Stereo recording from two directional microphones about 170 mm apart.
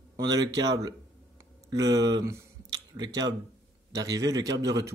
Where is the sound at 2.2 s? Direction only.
20° right (ahead or behind).